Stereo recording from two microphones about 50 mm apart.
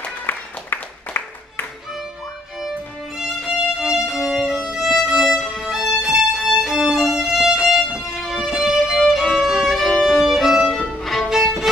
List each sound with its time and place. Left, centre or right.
0.3 s music: left
3.2 s violin: centre
5.4 s violin: centre
5.7 s music: centre
10.9 s violin: centre
11.2 s music: centre